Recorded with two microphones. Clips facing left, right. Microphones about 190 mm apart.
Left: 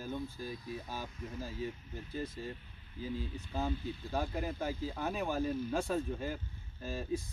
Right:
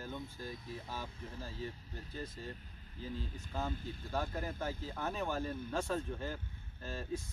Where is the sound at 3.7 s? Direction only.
45° right (ahead or behind).